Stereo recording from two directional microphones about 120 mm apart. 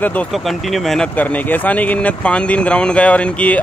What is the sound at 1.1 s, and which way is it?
Speech, 15° left (ahead or behind).